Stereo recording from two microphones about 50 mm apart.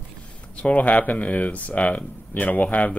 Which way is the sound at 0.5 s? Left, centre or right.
Left.